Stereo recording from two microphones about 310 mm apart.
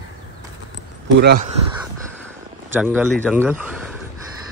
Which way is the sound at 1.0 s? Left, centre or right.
Right.